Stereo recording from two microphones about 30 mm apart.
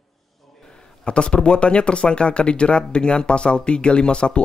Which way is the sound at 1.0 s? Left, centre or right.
Left.